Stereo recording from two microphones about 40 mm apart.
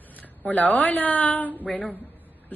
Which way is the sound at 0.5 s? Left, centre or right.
Left.